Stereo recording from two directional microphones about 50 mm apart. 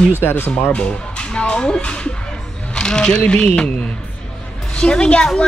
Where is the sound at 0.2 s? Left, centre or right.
Left.